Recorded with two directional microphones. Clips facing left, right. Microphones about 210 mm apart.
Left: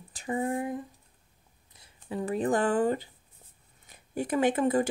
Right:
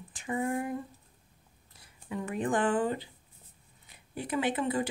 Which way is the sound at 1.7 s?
30° left (ahead or behind).